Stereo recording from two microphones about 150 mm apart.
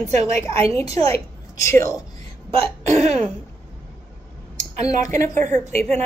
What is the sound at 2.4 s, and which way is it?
Speech, 40° right (ahead or behind).